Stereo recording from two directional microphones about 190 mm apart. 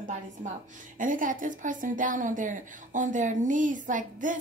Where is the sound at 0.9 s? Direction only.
45° right (ahead or behind).